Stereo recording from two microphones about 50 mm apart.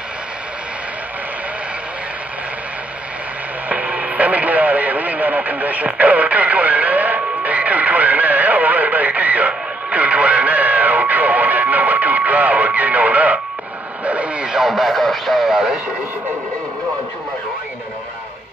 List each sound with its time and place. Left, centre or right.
3.6 s radio: right
14.5 s speech: centre